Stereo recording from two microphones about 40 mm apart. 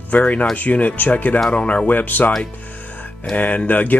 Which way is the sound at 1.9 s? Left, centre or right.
Left.